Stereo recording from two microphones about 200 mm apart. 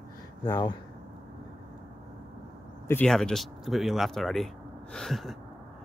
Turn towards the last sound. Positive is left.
turn(degrees=0)  # may be behind; listen again after turning